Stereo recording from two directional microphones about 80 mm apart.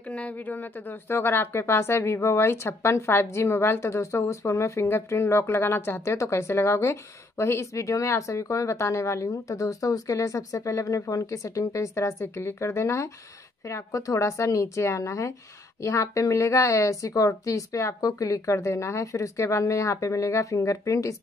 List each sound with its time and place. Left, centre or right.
0.1 s speech: centre; by 21.2 s left